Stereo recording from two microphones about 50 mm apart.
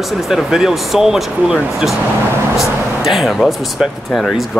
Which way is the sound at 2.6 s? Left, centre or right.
Centre.